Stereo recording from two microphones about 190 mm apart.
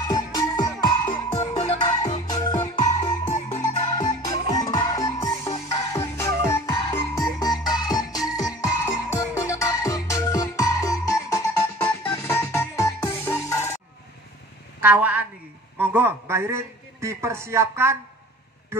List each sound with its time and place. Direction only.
0.1 s music: 20° left (ahead or behind)
3.3 s music: 35° left (ahead or behind)
3.9 s music: 20° left (ahead or behind)
14.8 s a woman's voice: 10° right (ahead or behind)